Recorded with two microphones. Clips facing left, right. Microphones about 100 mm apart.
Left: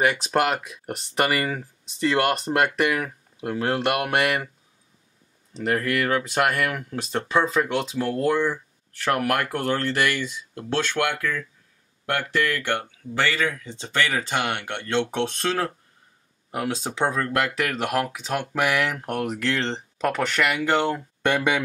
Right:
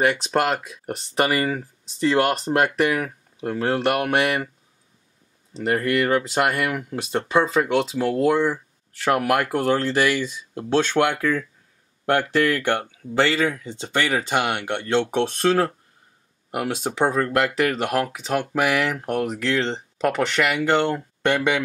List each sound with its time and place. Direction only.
0.3 s speech: centre (ahead or behind)
5.6 s speech: 5° right (ahead or behind); by 11.4 s 25° right (ahead or behind)
12.7 s speech: 20° right (ahead or behind)
13.8 s speech: 10° right (ahead or behind); by 21.6 s 5° left (ahead or behind)